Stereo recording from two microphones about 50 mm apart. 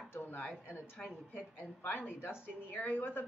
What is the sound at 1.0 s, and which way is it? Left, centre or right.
Speech, centre.